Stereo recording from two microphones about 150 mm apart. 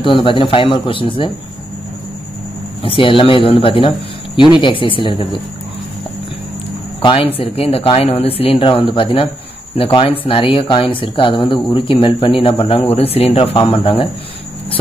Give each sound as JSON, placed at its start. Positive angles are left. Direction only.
{"t": 0.0, "sound": "speech", "side_deg": 35}
{"t": 2.8, "sound": "speech", "side_deg": 35}
{"t": 7.0, "sound": "speech", "side_deg": 35}